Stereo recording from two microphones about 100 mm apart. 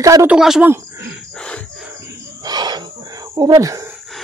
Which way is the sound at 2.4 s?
45° right (ahead or behind).